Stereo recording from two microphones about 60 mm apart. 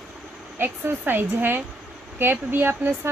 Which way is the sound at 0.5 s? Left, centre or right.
Right.